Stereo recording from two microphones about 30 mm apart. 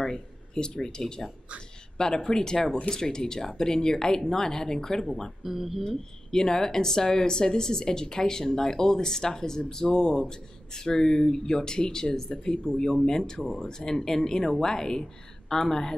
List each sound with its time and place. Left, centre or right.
0.0 s speech: left
5.4 s speech: centre
5.9 s speech: centre